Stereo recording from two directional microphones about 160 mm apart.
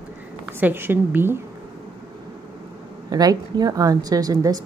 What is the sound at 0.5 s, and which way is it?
Speech, 10° right (ahead or behind).